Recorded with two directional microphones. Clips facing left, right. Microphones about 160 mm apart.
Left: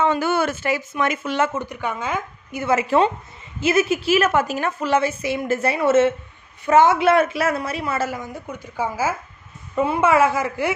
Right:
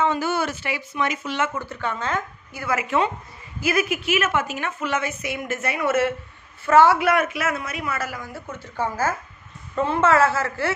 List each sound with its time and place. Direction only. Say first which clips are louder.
0.0 s speech: left 3 dB; 60° left (ahead or behind)
1.5 s speech: left 2 dB; 15° left (ahead or behind)
2.6 s a woman's voice: left 5 dB; 30° left (ahead or behind)